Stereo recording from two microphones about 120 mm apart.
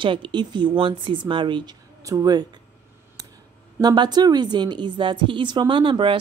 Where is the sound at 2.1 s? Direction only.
35° right (ahead or behind).